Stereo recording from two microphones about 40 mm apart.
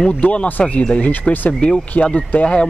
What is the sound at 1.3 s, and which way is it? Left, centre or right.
Speech, left.